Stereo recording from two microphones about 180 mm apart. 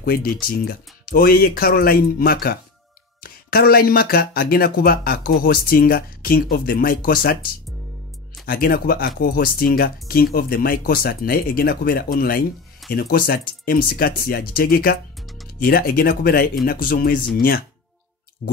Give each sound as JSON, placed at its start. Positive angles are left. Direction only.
{"t": 0.0, "sound": "speech", "side_deg": 55}